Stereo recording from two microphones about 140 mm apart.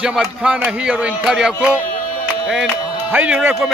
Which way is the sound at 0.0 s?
5° right (ahead or behind).